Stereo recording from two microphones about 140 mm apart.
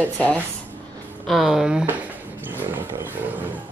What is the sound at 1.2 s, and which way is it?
Speech, centre (ahead or behind).